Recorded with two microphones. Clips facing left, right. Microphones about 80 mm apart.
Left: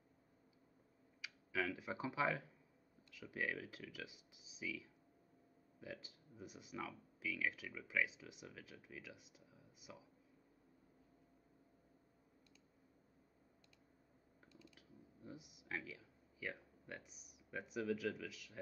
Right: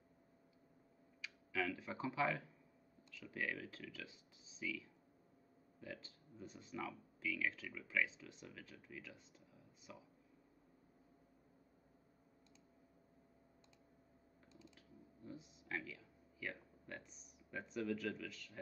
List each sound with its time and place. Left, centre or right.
1.2 s speech: centre
14.8 s speech: centre